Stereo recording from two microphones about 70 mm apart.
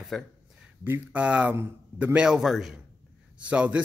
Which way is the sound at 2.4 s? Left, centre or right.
Centre.